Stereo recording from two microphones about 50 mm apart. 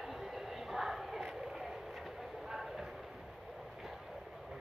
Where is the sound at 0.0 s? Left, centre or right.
Centre.